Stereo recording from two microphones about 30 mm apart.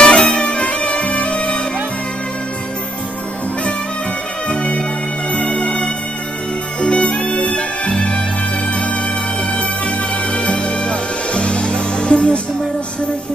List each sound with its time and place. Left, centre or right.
0.0 s music: left
4.5 s music: left
9.5 s music: left